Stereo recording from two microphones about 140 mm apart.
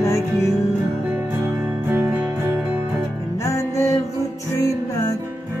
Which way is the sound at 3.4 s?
20° left (ahead or behind).